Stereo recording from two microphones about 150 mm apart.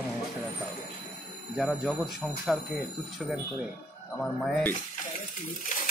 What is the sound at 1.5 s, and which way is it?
Speech, centre (ahead or behind).